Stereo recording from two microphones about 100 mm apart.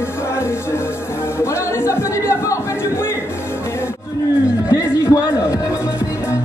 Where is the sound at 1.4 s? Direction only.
25° left (ahead or behind).